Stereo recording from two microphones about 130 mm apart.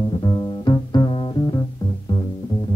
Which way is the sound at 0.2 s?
35° left (ahead or behind).